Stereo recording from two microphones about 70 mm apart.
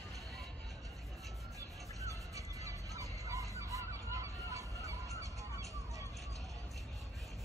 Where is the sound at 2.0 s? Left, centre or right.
Right.